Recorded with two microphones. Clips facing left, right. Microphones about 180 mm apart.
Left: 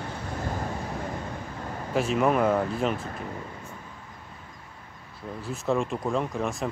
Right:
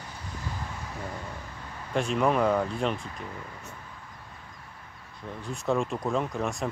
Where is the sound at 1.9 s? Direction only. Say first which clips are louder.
Left 2 dB; 5° left (ahead or behind).